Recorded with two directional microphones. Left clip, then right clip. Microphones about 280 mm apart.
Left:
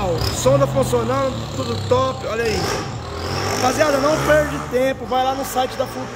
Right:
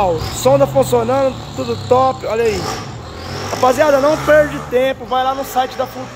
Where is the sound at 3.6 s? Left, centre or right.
Centre.